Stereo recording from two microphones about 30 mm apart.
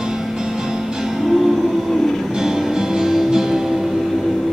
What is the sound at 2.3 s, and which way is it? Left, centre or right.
Music, centre.